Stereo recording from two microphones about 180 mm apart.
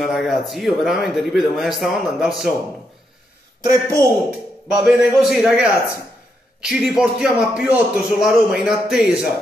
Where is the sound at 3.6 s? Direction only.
20° right (ahead or behind).